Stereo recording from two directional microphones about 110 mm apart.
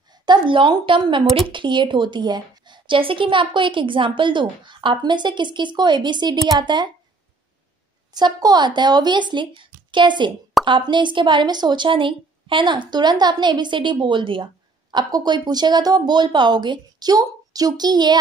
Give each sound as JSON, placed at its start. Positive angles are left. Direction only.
{"t": 0.2, "sound": "speech", "side_deg": -45}
{"t": 1.2, "sound": "speech", "side_deg": 0}
{"t": 1.5, "sound": "speech", "side_deg": -45}
{"t": 8.1, "sound": "speech", "side_deg": -35}